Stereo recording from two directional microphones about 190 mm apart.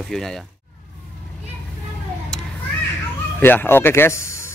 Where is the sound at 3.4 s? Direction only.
10° left (ahead or behind).